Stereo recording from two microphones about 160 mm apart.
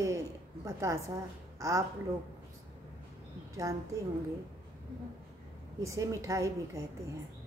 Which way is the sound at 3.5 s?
20° right (ahead or behind).